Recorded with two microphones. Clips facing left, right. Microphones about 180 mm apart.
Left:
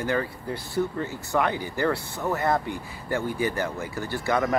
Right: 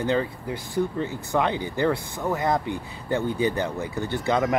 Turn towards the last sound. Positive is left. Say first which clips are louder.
# right 1 dB
turn(degrees=-15)  # may be behind; listen again after turning